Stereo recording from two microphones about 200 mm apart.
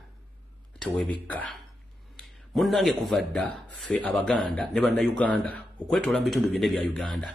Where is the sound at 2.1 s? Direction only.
Centre (ahead or behind).